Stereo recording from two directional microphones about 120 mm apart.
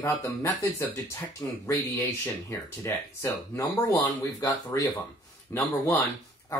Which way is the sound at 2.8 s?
25° left (ahead or behind).